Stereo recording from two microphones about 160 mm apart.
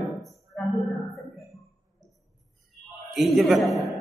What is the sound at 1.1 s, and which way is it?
Music, centre (ahead or behind).